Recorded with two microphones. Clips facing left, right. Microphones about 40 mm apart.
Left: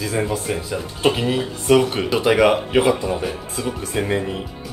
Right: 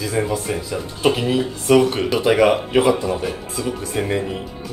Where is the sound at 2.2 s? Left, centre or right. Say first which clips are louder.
Even; left.